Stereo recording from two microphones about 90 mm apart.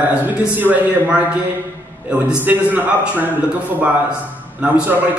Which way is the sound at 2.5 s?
20° right (ahead or behind).